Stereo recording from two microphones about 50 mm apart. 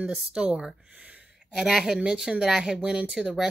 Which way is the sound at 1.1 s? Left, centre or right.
Right.